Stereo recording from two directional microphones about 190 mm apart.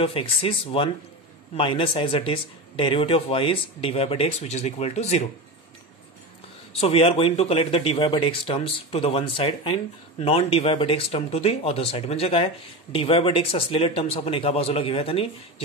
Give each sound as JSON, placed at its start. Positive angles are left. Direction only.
{"t": 0.0, "sound": "speech", "side_deg": 30}
{"t": 6.8, "sound": "speech", "side_deg": 30}